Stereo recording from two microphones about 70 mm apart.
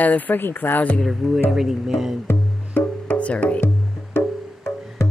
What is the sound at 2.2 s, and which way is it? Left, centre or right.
Music, left.